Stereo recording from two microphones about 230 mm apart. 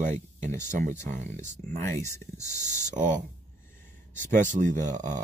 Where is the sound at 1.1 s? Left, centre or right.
Right.